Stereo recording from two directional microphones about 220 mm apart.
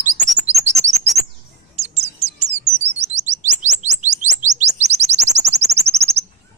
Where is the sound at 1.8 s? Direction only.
30° right (ahead or behind).